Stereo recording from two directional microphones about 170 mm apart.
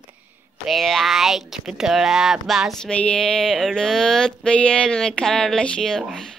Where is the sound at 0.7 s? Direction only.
Centre (ahead or behind).